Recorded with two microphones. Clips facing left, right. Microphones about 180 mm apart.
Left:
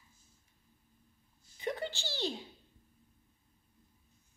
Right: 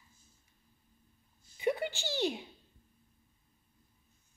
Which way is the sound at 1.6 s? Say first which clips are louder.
Right 5 dB; 10° right (ahead or behind).